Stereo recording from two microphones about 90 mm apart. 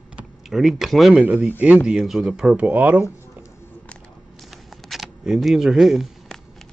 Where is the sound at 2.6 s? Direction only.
20° right (ahead or behind).